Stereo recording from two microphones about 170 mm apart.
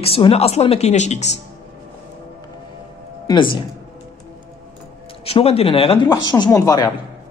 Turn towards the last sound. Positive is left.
turn(degrees=20)  # may be behind; listen again after turning